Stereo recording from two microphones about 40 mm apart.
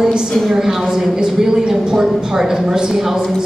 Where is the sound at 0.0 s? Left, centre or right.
Centre.